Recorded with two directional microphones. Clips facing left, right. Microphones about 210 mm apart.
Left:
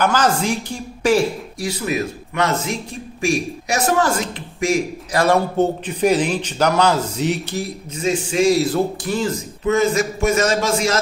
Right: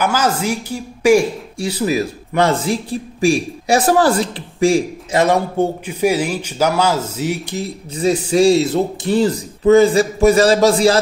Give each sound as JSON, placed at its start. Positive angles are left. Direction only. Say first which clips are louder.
{"t": 0.0, "sound": "a man's voice", "louder": "even", "side_deg": -10}
{"t": 1.6, "sound": "speech", "louder": "right 4 dB", "side_deg": -30}
{"t": 5.2, "sound": "a man's voice", "louder": "even", "side_deg": -15}
{"t": 7.9, "sound": "speech", "louder": "right 5 dB", "side_deg": -35}